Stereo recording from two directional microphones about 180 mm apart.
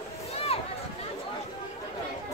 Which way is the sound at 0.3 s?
35° left (ahead or behind).